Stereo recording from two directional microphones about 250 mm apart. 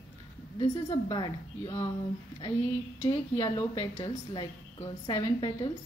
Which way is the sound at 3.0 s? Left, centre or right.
Centre.